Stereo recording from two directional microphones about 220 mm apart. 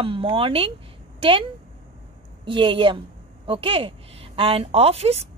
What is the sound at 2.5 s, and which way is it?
A woman's voice, 20° right (ahead or behind).